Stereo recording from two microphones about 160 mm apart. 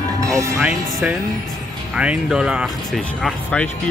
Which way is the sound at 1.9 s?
5° right (ahead or behind).